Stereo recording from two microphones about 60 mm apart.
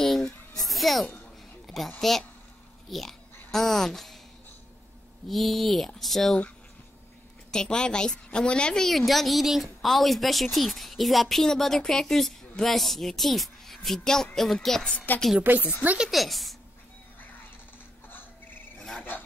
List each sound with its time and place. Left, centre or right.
0.0 s a sound: centre
1.7 s speech: centre
5.3 s speech: centre
7.5 s a woman's voice: centre
8.8 s speech: centre
14.8 s a woman's voice: centre
16.1 s speech: centre
18.0 s a sound: left